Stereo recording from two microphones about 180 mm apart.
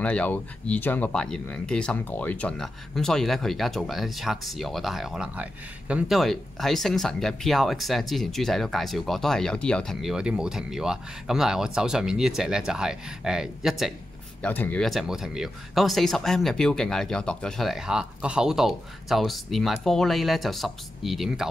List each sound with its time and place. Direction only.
0.0 s speech: 5° left (ahead or behind)
14.4 s speech: 10° left (ahead or behind)